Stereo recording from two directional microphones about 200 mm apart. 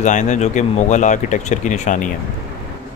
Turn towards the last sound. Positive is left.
turn(degrees=35)  # may be behind; listen again after turning